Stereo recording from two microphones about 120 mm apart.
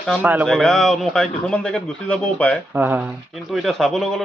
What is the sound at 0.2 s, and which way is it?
Speech, 15° right (ahead or behind).